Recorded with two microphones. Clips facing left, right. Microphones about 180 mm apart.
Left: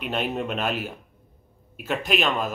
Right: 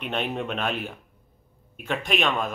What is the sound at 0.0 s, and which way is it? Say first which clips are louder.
Speech: left 1 dB; 5° left (ahead or behind).